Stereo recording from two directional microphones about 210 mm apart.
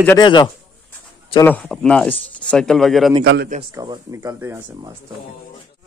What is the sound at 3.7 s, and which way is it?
A man's voice, 20° right (ahead or behind).